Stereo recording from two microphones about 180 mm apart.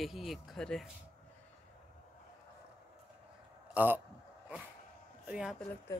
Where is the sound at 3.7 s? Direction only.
10° right (ahead or behind).